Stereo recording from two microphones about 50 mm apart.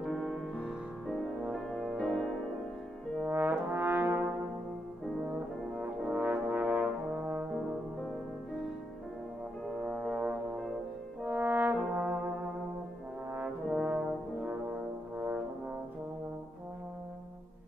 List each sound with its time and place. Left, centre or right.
0.0 s music: centre
1.5 s music: centre
3.3 s brass instrument: right
5.8 s brass instrument: right
9.8 s brass instrument: centre
11.2 s brass instrument: right
13.7 s brass instrument: centre